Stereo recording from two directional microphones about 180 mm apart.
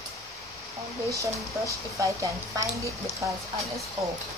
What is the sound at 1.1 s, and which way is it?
A woman's voice, 15° right (ahead or behind).